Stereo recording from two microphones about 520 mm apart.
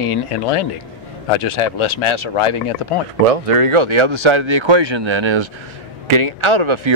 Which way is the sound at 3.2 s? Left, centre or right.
Right.